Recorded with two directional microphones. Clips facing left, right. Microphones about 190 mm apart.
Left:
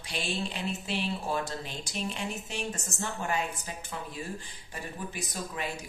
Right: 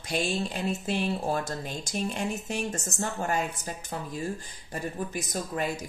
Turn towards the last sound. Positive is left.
turn(degrees=-45)  # may be behind; listen again after turning